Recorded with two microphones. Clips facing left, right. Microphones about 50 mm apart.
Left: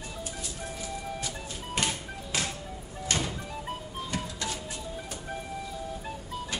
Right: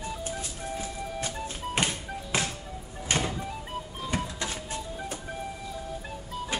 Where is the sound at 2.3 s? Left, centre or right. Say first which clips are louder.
Right 2 dB; right.